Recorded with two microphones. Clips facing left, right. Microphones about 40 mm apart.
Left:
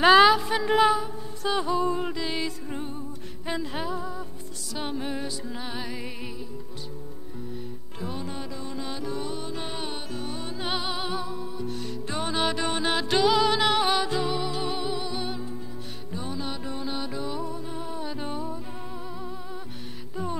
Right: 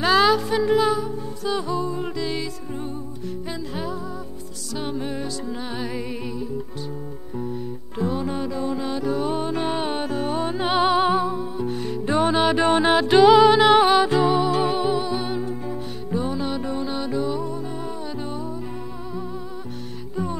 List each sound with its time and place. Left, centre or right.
0.0 s music: centre
3.4 s music: left; by 6.3 s centre
8.1 s music: centre
9.3 s music: right; by 18.6 s centre